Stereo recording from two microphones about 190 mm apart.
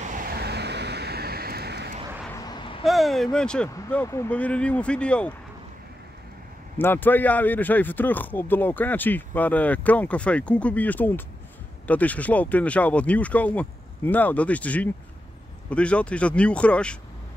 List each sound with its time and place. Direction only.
0.0 s vehicle: 45° right (ahead or behind)
2.4 s a sound: 25° left (ahead or behind)
2.8 s speech: centre (ahead or behind)
6.8 s speech: 10° left (ahead or behind)